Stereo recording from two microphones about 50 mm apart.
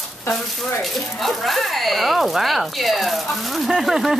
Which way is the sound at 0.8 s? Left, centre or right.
Centre.